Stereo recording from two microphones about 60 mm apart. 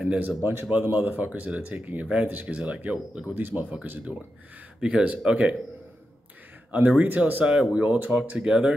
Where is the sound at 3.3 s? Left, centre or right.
Right.